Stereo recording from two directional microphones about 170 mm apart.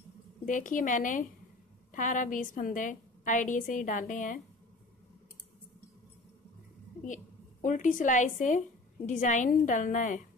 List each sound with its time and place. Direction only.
0.5 s a woman's voice: 50° left (ahead or behind)
7.0 s a sound: 45° left (ahead or behind)
7.6 s a woman's voice: 50° left (ahead or behind)